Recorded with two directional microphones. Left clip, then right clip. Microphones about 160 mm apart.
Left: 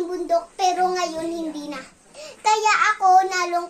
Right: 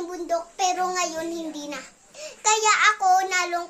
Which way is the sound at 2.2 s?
10° right (ahead or behind).